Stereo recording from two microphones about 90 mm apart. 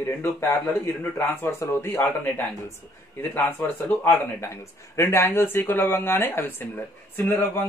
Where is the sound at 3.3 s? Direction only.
20° left (ahead or behind).